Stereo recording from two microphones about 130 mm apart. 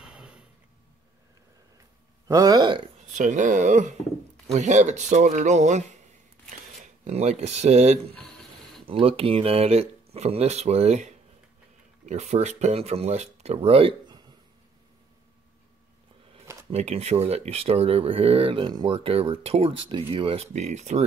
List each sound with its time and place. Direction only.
0.0 s a sound: 5° right (ahead or behind)
2.2 s speech: 30° right (ahead or behind)
3.1 s speech: 75° right (ahead or behind)
7.1 s speech: 55° right (ahead or behind)
9.0 s speech: 45° right (ahead or behind)
12.1 s speech: 60° right (ahead or behind)
16.7 s speech: 55° right (ahead or behind)